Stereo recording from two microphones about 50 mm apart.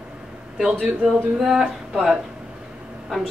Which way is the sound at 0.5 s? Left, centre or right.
Centre.